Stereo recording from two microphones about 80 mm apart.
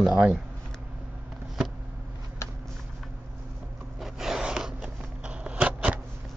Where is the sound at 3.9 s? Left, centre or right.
Centre.